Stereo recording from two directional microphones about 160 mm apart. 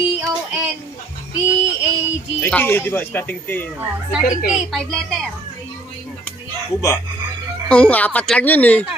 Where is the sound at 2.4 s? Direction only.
10° left (ahead or behind).